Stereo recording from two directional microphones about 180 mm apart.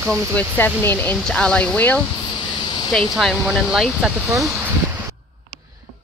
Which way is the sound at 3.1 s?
Centre (ahead or behind).